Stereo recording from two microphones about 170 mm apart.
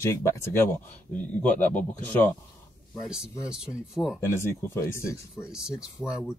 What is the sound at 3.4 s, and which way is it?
Speech, 5° right (ahead or behind).